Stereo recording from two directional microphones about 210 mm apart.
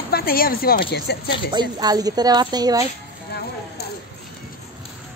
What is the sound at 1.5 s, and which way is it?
Speech, 20° right (ahead or behind).